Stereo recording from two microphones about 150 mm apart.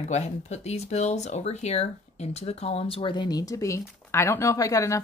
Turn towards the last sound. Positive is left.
turn(degrees=20)  # may be behind; listen again after turning